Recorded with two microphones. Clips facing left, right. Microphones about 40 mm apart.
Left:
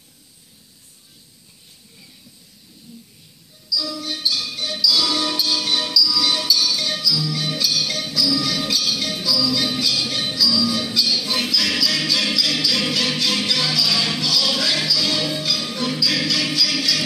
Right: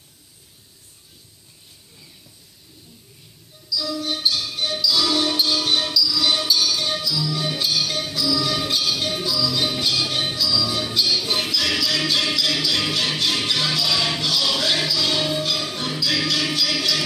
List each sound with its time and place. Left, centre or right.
3.7 s music: right
13.2 s music: right